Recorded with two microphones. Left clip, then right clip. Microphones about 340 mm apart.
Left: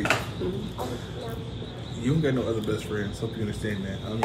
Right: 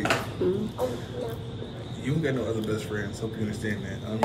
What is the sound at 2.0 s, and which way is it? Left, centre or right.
A man's voice, centre.